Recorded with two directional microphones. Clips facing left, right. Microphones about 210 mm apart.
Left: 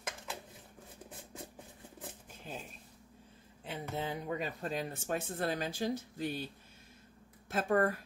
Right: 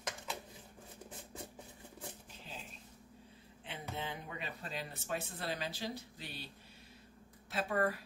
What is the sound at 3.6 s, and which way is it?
Speech, 40° left (ahead or behind).